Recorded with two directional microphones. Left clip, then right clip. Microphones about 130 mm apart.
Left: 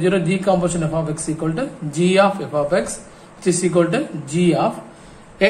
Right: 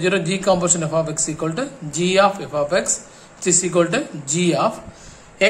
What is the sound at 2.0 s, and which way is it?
Speech, 10° right (ahead or behind).